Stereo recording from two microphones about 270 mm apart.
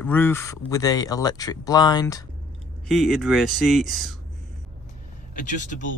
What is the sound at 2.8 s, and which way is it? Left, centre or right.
Speech, centre.